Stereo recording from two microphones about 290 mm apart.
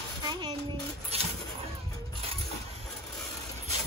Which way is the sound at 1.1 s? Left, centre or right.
Right.